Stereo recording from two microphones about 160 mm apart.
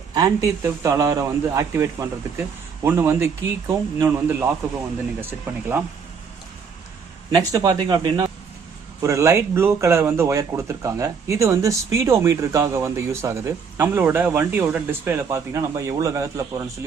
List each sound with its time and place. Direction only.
0.1 s speech: 20° right (ahead or behind)
7.3 s speech: 25° right (ahead or behind)
9.0 s speech: 20° right (ahead or behind)